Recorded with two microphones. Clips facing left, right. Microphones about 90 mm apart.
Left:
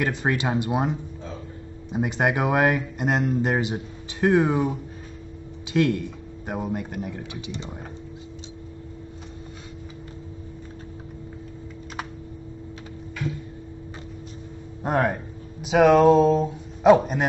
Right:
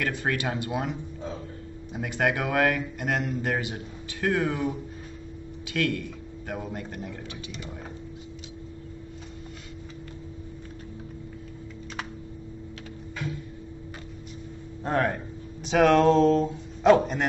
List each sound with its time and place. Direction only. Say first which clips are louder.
0.0 s speech: left 4 dB; 20° left (ahead or behind)
14.8 s speech: left 3 dB; 15° left (ahead or behind)